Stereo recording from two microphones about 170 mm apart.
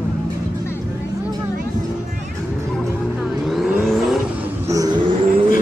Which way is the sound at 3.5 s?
Centre (ahead or behind).